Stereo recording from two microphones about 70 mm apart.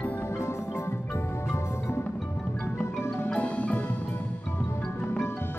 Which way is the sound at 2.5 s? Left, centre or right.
Left.